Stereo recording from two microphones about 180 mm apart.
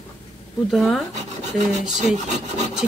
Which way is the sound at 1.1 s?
40° right (ahead or behind).